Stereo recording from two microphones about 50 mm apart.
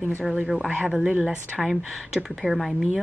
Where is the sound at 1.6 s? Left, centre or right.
Centre.